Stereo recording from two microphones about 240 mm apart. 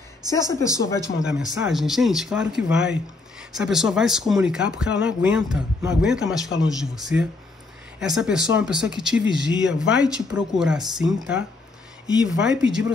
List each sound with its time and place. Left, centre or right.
0.3 s speech: centre
1.2 s speech: centre
12.2 s speech: centre